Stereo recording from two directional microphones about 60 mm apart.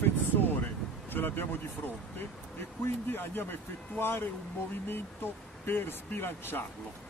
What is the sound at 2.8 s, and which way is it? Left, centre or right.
A man's voice, left.